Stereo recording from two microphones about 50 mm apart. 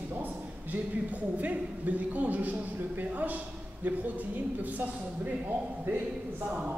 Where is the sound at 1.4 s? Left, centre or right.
Right.